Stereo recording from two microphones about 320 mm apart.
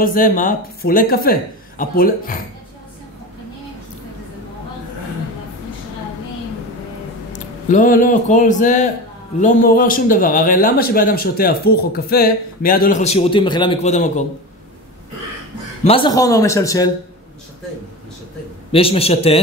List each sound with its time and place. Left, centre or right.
0.0 s a man's voice: left
7.3 s a man's voice: left
15.8 s a man's voice: centre
18.7 s a man's voice: centre